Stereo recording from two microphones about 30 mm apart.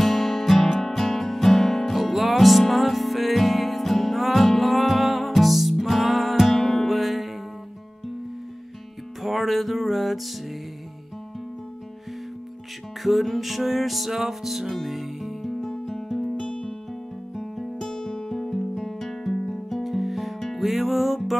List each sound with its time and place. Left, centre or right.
0.0 s music: centre
9.2 s music: centre
13.0 s music: centre
16.4 s music: left
17.4 s music: centre
17.8 s music: centre
18.5 s music: centre